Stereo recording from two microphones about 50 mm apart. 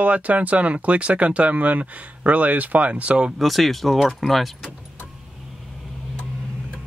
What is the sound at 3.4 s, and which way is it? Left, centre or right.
Speech, centre.